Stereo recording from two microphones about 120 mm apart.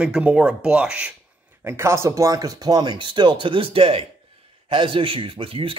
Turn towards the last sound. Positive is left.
turn(degrees=-50)  # may be behind; listen again after turning